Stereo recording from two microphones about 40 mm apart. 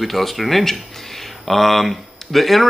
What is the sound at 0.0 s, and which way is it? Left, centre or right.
Speech, centre.